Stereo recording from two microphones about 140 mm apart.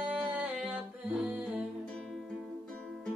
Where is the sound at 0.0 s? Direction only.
10° right (ahead or behind).